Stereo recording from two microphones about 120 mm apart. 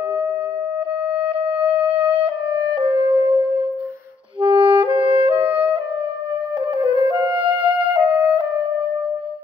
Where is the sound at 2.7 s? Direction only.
45° right (ahead or behind).